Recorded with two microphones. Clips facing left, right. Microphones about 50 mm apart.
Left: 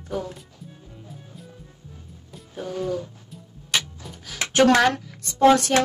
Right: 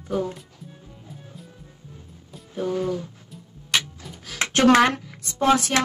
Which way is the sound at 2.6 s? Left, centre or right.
Centre.